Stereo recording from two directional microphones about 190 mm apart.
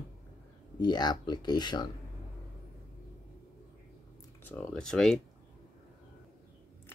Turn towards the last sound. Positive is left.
turn(degrees=0)  # may be behind; listen again after turning